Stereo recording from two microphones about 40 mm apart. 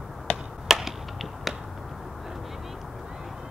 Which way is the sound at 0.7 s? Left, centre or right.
Centre.